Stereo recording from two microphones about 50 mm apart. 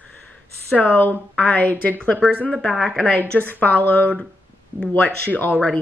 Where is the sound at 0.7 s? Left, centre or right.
Left.